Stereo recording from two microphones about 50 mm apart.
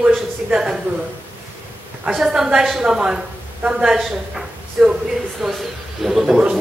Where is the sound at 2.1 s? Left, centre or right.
Centre.